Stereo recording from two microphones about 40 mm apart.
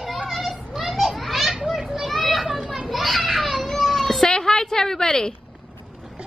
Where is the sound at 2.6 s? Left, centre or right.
Right.